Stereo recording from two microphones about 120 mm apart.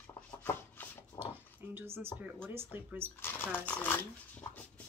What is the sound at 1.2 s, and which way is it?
Speech, 15° right (ahead or behind).